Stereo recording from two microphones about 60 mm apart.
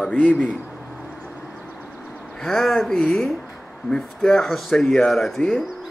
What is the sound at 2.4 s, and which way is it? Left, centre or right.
Speech, centre.